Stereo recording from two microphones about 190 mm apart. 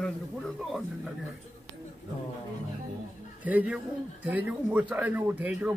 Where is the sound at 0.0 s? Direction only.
Centre (ahead or behind).